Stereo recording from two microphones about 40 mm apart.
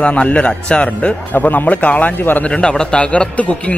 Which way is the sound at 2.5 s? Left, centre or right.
Left.